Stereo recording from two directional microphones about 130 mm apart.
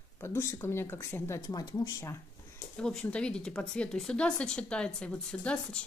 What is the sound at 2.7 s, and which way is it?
Speech, 5° left (ahead or behind).